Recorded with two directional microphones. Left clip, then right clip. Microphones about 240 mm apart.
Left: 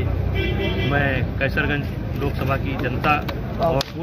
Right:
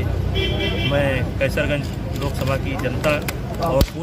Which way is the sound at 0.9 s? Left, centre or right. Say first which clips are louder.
Right 1 dB; centre.